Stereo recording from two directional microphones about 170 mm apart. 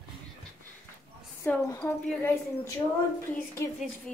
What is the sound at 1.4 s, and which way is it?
Speech, 10° left (ahead or behind).